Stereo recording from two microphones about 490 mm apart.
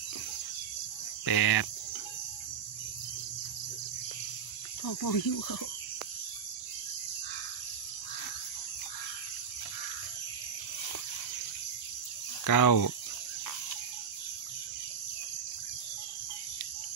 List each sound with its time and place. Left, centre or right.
1.2 s cricket: left
4.8 s cricket: left
12.4 s cricket: left